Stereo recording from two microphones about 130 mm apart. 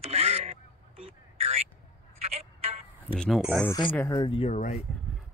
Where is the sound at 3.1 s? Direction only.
5° left (ahead or behind).